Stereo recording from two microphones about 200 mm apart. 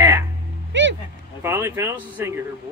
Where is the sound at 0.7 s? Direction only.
65° right (ahead or behind).